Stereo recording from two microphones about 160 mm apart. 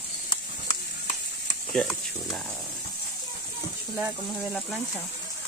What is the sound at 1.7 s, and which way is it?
Speech, centre (ahead or behind).